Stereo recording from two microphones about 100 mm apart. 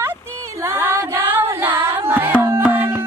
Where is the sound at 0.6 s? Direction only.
25° right (ahead or behind).